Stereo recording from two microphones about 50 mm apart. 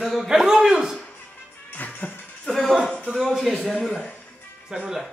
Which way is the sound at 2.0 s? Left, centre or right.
Left.